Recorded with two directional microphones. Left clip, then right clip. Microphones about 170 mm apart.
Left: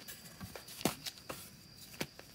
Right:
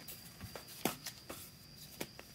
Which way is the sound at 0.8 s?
20° left (ahead or behind).